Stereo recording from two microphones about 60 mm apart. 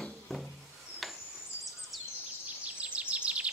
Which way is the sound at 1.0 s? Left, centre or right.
Centre.